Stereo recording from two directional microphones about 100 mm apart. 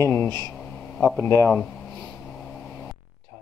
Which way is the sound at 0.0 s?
25° left (ahead or behind).